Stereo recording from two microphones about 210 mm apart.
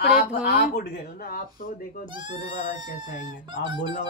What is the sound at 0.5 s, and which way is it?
Speech, 45° left (ahead or behind).